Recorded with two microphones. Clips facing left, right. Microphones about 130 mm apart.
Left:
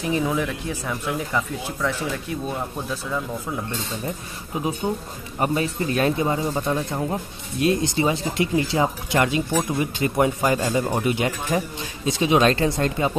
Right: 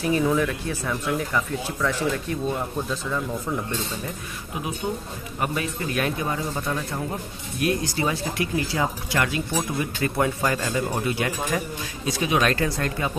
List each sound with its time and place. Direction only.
0.0 s speech: 15° left (ahead or behind)
4.8 s speech: 30° left (ahead or behind)